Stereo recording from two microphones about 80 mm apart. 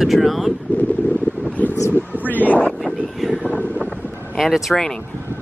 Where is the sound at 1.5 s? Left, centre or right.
Left.